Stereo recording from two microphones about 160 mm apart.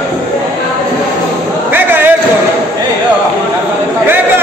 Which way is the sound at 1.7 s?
10° right (ahead or behind).